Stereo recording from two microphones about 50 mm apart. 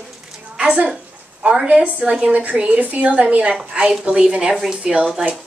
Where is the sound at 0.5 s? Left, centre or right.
Centre.